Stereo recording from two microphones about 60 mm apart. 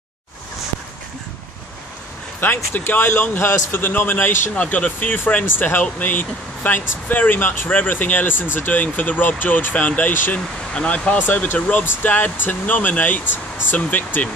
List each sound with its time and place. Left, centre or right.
2.4 s speech: left